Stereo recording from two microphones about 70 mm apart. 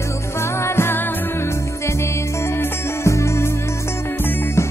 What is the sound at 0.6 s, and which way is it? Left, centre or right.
Music, left.